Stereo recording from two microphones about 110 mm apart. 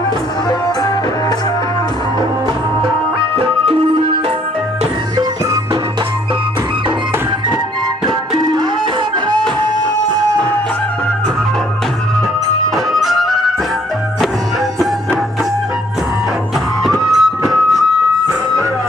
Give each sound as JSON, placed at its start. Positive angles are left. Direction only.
{"t": 8.4, "sound": "music", "side_deg": -40}
{"t": 12.7, "sound": "music", "side_deg": 0}
{"t": 16.8, "sound": "music", "side_deg": 0}